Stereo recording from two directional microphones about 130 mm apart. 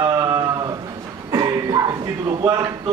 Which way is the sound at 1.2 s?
30° right (ahead or behind).